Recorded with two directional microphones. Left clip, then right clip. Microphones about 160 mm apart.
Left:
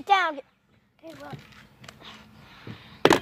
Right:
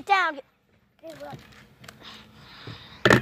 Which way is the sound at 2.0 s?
25° right (ahead or behind).